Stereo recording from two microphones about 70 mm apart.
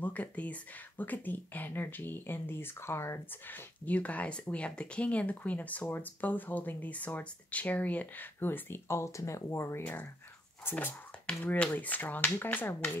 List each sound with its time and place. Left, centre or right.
0.0 s speech: left
10.6 s speech: left